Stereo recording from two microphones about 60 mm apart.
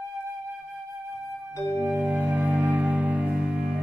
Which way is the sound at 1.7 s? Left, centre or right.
Right.